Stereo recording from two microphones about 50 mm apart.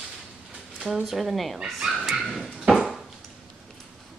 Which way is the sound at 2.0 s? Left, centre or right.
Centre.